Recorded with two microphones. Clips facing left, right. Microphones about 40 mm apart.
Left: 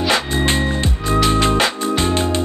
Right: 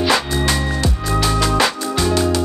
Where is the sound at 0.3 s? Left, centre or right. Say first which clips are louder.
Left 1 dB; left.